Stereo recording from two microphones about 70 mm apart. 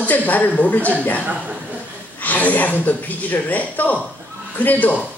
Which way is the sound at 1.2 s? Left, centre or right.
Centre.